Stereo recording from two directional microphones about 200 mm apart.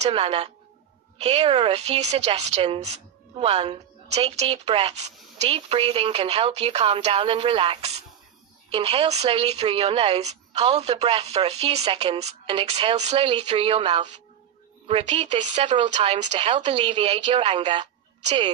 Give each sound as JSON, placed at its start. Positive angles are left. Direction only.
{"t": 0.0, "sound": "a woman's voice", "side_deg": -30}